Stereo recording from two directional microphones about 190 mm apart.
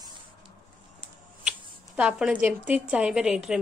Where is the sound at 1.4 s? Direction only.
5° right (ahead or behind).